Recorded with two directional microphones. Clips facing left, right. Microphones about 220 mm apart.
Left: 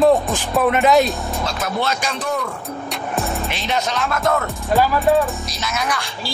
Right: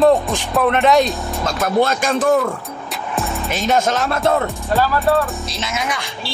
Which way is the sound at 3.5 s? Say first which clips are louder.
Right 10 dB; 45° right (ahead or behind).